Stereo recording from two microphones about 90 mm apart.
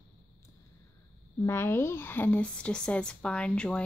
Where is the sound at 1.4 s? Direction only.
25° left (ahead or behind).